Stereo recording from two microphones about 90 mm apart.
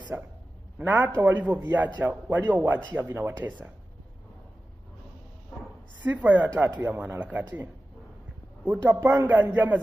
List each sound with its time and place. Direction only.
0.1 s a man's voice: 20° right (ahead or behind)
6.0 s a woman's voice: 15° right (ahead or behind)